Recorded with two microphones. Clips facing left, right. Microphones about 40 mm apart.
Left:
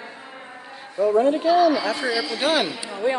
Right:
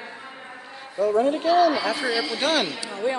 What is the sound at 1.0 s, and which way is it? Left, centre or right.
Speech, centre.